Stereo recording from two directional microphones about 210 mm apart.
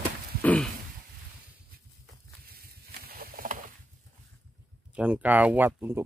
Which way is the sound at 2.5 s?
45° right (ahead or behind).